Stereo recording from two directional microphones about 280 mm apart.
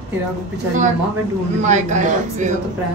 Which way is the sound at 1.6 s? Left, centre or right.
Right.